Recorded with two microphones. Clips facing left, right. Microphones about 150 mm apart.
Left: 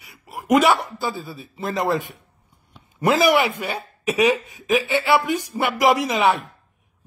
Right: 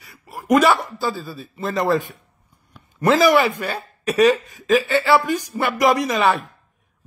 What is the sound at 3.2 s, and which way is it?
Speech, 20° left (ahead or behind).